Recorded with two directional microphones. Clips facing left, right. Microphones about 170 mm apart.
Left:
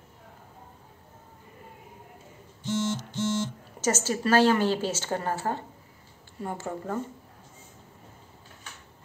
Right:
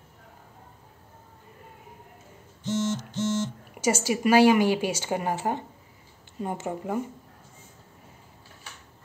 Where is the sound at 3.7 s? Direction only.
10° right (ahead or behind).